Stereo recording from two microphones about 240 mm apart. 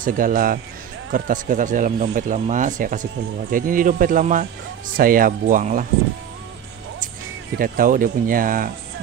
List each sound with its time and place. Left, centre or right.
0.0 s speech: right
7.5 s speech: right